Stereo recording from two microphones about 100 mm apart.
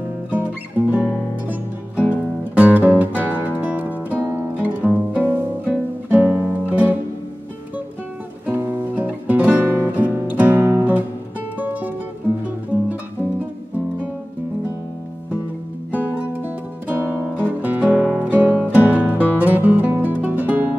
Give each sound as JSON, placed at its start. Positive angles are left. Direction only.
{"t": 0.3, "sound": "music", "side_deg": -15}
{"t": 8.5, "sound": "music", "side_deg": -20}
{"t": 15.9, "sound": "music", "side_deg": -15}